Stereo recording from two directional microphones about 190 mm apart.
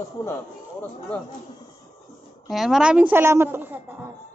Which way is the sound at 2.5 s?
Centre (ahead or behind).